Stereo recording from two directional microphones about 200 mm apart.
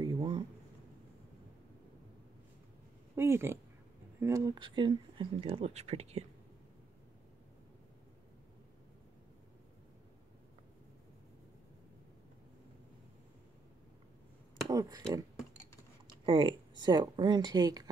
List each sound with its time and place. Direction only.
0.0 s a sound: 25° right (ahead or behind)
3.2 s speech: 15° right (ahead or behind); by 6.2 s 30° right (ahead or behind)
14.7 s speech: 20° right (ahead or behind)
16.3 s speech: 25° right (ahead or behind)